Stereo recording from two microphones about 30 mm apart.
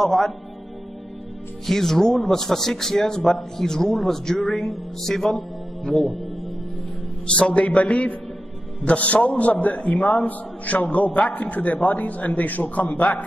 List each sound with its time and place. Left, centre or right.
0.0 s a man's voice: centre
1.7 s a man's voice: centre
7.2 s a man's voice: left